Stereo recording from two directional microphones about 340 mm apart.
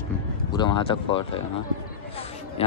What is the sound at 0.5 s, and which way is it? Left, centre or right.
A man's voice, centre.